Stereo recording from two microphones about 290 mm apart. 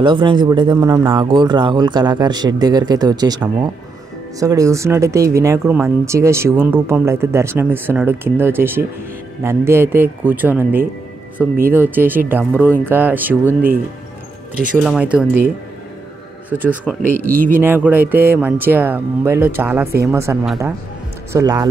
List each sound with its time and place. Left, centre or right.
0.0 s speech: centre
4.4 s speech: centre
14.5 s speech: right
14.8 s speech: centre
16.4 s speech: centre
17.2 s speech: right
17.6 s speech: centre